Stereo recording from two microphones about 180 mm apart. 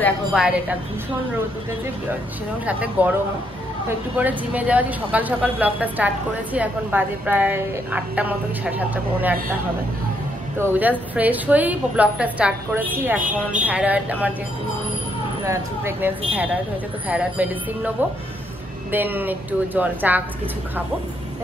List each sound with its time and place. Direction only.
0.3 s speech: 5° right (ahead or behind)
2.6 s speech: 10° right (ahead or behind)
4.2 s speech: 10° right (ahead or behind)
10.6 s speech: 10° right (ahead or behind)
15.4 s speech: 15° right (ahead or behind)
17.1 s speech: 10° right (ahead or behind)